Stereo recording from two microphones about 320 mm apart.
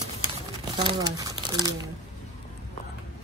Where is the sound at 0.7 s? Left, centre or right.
Centre.